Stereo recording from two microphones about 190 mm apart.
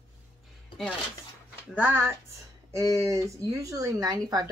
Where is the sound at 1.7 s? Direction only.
10° right (ahead or behind).